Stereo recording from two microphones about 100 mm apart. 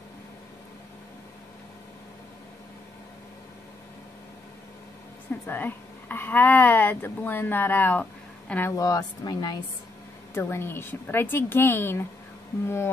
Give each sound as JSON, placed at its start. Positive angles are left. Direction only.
{"t": 5.5, "sound": "speech", "side_deg": 20}
{"t": 8.7, "sound": "speech", "side_deg": 35}
{"t": 10.3, "sound": "speech", "side_deg": 25}